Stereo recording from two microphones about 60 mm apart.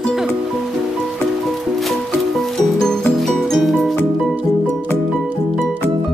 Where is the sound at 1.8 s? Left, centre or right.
Centre.